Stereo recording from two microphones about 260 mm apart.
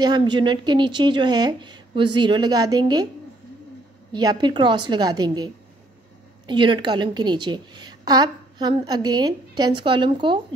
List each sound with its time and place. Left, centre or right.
0.0 s a woman's voice: centre
4.1 s a woman's voice: centre